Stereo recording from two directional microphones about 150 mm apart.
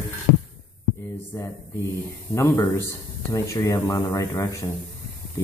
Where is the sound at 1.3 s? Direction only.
20° left (ahead or behind).